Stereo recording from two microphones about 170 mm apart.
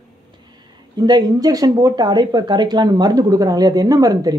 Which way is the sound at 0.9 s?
25° right (ahead or behind).